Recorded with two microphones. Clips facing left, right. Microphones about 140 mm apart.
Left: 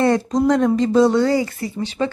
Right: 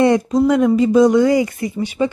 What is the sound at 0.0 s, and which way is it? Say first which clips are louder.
A woman's voice: right 3 dB; 15° right (ahead or behind).